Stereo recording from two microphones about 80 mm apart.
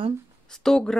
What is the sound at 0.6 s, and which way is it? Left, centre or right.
Speech, centre.